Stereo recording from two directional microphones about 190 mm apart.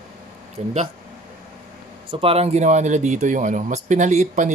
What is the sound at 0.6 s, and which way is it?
Speech, 40° right (ahead or behind).